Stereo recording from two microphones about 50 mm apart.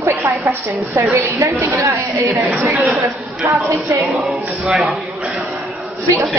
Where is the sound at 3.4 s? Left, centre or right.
Right.